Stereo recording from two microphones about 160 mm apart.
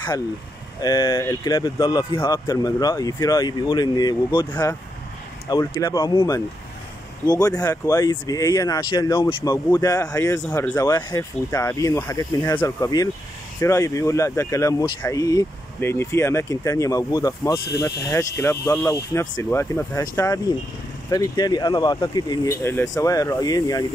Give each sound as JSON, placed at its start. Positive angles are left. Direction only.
{"t": 0.8, "sound": "speech", "side_deg": 25}
{"t": 7.2, "sound": "speech", "side_deg": 25}